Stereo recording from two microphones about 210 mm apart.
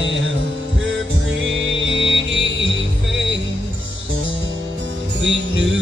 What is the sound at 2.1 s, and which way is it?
Music, 65° right (ahead or behind).